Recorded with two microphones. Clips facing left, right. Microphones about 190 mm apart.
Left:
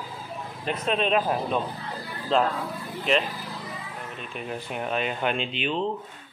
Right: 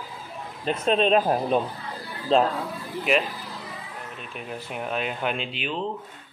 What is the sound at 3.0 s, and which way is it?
Speech, 5° right (ahead or behind).